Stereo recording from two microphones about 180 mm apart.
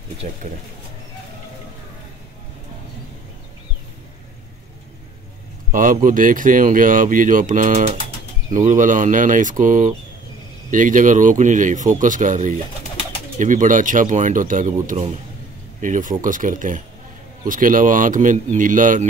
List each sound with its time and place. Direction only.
0.2 s speech: 40° right (ahead or behind)
5.7 s speech: 50° right (ahead or behind)